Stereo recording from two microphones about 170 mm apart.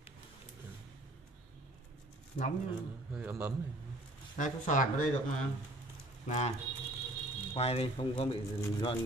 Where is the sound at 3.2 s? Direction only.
10° right (ahead or behind).